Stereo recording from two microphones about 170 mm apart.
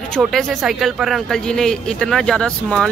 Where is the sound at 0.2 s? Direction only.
Centre (ahead or behind).